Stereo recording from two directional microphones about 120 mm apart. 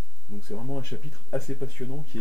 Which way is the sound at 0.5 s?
20° left (ahead or behind).